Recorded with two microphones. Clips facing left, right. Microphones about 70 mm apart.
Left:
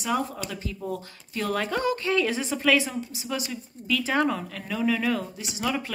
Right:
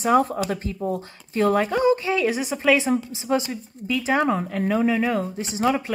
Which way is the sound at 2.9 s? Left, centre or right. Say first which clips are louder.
Right 10 dB; right.